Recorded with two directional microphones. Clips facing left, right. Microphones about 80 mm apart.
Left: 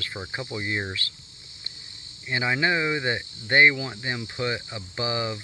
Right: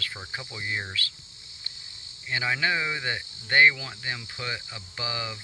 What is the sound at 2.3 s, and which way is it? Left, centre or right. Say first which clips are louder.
Speech: left 3 dB; centre.